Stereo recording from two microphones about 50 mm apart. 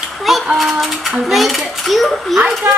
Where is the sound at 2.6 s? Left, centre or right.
Right.